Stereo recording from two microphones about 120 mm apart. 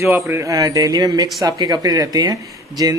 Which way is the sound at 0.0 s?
20° right (ahead or behind).